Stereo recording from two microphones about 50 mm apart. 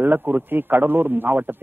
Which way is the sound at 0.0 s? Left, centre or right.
Right.